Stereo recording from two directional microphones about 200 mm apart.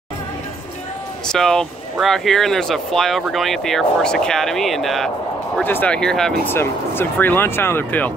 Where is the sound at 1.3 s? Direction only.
5° left (ahead or behind).